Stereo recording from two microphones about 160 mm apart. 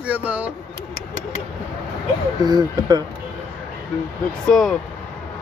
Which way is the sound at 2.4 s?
25° right (ahead or behind).